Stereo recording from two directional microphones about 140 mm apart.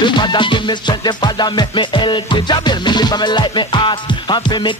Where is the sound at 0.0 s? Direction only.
35° left (ahead or behind).